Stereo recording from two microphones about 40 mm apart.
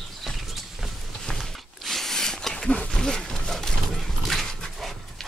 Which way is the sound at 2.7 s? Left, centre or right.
Left.